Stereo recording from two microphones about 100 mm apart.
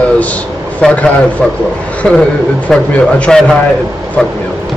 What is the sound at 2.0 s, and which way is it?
A man's voice, centre (ahead or behind).